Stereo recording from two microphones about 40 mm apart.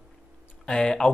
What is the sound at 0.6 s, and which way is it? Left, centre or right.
Speech, left.